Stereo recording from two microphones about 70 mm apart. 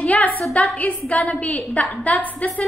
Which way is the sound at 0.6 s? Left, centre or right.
Left.